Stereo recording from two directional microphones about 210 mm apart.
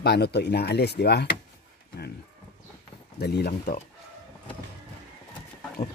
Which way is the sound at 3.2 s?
50° left (ahead or behind).